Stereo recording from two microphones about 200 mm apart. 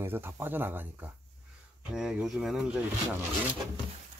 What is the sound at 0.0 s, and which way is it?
Speech, 10° right (ahead or behind).